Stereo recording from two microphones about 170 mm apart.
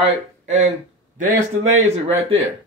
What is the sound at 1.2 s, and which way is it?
A man's voice, 40° right (ahead or behind).